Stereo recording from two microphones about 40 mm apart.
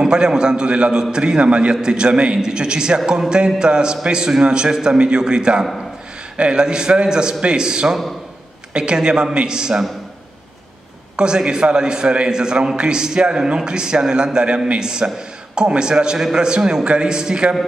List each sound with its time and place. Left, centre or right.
0.0 s a man's voice: centre
11.1 s a man's voice: right
16.2 s a man's voice: centre
16.4 s a man's voice: right